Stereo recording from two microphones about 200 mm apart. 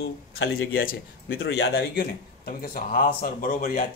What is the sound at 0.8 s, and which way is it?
Speech, 50° left (ahead or behind).